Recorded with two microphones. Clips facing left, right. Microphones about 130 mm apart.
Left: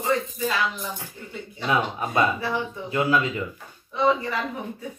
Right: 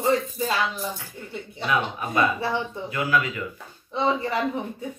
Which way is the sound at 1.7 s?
30° left (ahead or behind).